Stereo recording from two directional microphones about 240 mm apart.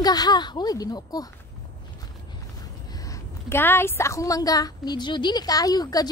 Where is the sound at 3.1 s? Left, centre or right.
Centre.